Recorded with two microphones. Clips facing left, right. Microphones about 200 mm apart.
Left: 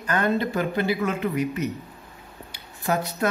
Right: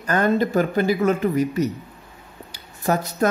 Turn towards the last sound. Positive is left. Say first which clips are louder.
# right 3 dB
turn(degrees=-40)  # may be behind; listen again after turning